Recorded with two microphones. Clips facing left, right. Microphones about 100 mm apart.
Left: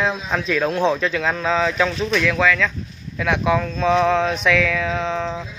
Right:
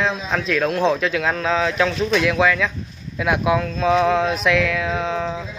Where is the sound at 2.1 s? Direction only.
10° right (ahead or behind).